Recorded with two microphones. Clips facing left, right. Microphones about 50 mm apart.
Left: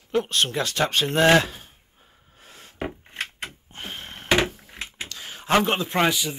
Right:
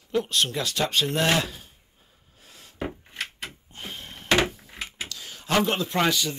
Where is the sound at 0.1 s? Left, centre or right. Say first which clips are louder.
Left 2 dB; left.